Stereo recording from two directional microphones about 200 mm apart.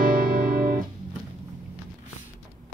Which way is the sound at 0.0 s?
45° right (ahead or behind).